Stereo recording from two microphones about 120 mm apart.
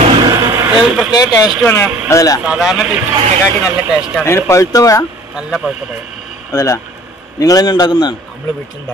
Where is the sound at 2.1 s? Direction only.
30° left (ahead or behind).